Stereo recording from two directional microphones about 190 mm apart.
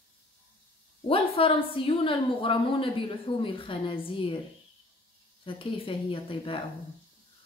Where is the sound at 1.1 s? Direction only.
30° left (ahead or behind).